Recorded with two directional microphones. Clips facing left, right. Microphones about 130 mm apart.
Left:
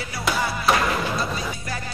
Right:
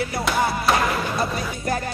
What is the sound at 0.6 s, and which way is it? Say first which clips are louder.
Music: right 1 dB; centre (ahead or behind).